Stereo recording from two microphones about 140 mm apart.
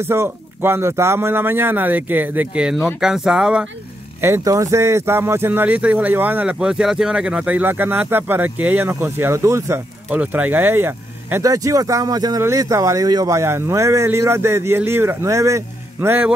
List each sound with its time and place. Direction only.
0.1 s speech: 15° right (ahead or behind)
4.2 s speech: 20° right (ahead or behind)